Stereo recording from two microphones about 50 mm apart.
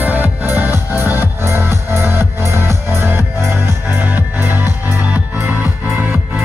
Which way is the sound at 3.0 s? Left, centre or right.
Right.